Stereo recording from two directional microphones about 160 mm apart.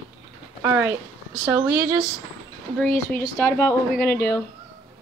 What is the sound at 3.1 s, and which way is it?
Speech, 15° left (ahead or behind).